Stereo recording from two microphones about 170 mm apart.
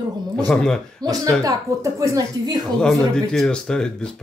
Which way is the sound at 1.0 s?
25° right (ahead or behind).